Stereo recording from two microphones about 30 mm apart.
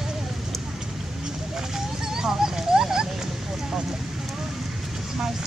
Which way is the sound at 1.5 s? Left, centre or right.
Centre.